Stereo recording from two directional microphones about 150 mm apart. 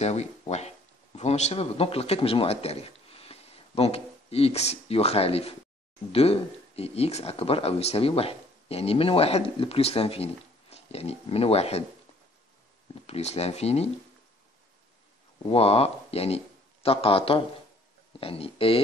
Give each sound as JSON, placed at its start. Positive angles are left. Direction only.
{"t": 0.0, "sound": "speech", "side_deg": 45}
{"t": 13.0, "sound": "speech", "side_deg": 45}
{"t": 15.4, "sound": "speech", "side_deg": 40}